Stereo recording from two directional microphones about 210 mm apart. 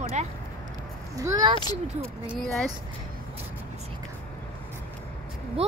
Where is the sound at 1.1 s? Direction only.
15° right (ahead or behind).